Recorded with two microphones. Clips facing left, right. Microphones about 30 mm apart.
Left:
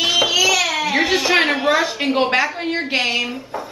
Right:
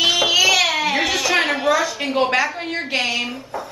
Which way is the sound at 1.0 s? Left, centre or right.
Left.